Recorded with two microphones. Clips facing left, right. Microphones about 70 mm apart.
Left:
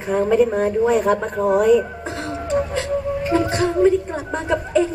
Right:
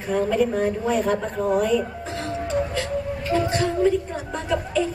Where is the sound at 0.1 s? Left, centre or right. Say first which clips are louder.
Left 4 dB; left.